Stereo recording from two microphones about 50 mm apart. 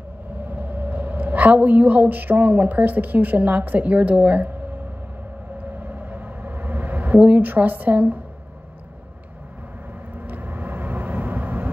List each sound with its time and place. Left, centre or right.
0.5 s a woman's voice: right
5.6 s a sound: right
10.1 s vehicle: right